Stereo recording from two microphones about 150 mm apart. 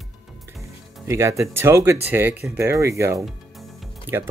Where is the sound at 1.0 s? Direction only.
20° right (ahead or behind).